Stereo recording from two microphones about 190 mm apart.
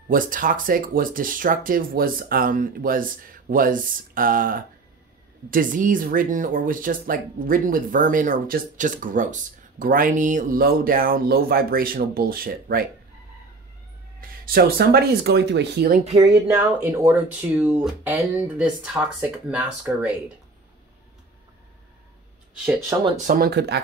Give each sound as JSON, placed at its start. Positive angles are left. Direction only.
{"t": 0.1, "sound": "speech", "side_deg": -45}
{"t": 14.2, "sound": "speech", "side_deg": -50}
{"t": 16.0, "sound": "speech", "side_deg": -35}
{"t": 16.3, "sound": "speech", "side_deg": -10}
{"t": 23.0, "sound": "speech", "side_deg": -40}